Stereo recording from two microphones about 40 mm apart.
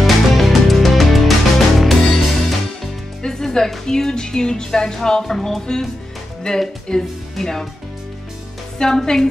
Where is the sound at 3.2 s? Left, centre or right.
Centre.